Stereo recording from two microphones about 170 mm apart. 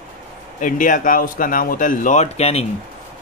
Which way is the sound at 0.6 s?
50° left (ahead or behind).